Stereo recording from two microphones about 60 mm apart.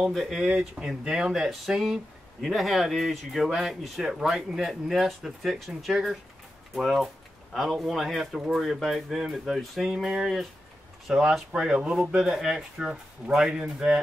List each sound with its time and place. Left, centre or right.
0.0 s speech: centre
11.3 s speech: centre